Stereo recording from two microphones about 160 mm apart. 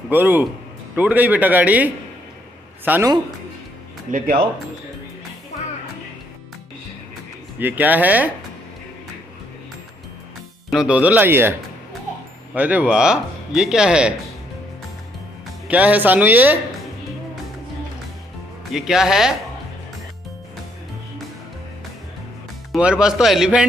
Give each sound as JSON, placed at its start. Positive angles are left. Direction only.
{"t": 0.1, "sound": "a man's voice", "side_deg": -10}
{"t": 4.1, "sound": "speech", "side_deg": -55}
{"t": 7.5, "sound": "a man's voice", "side_deg": -10}
{"t": 10.7, "sound": "a man's voice", "side_deg": -5}
{"t": 12.5, "sound": "speech", "side_deg": -10}
{"t": 15.7, "sound": "a man's voice", "side_deg": -10}
{"t": 18.7, "sound": "speech", "side_deg": 0}
{"t": 22.7, "sound": "speech", "side_deg": -5}